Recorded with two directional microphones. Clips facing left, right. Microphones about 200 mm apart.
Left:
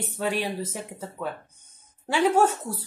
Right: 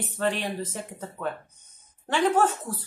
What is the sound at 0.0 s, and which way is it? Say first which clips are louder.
Speech: even; 10° left (ahead or behind).